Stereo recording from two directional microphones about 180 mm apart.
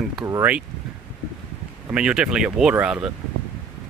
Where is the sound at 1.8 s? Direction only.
5° right (ahead or behind).